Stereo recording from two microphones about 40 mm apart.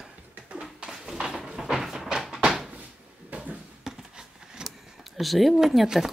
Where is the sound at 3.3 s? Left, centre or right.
Right.